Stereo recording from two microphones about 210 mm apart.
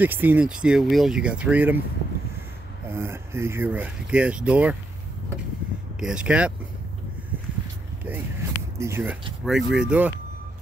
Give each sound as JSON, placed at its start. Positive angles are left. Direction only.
{"t": 0.0, "sound": "speech", "side_deg": -10}
{"t": 2.9, "sound": "speech", "side_deg": -10}
{"t": 5.9, "sound": "speech", "side_deg": -5}
{"t": 8.0, "sound": "a sound", "side_deg": -10}
{"t": 9.4, "sound": "speech", "side_deg": 0}